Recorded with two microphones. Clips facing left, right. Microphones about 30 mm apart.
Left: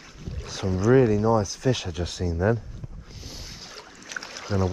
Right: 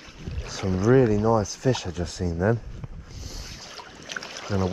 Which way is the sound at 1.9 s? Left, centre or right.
Left.